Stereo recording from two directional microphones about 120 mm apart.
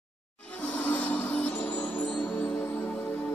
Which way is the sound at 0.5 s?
10° left (ahead or behind).